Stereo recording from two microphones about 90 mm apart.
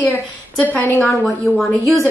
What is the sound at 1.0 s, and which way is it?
Speech, 5° left (ahead or behind).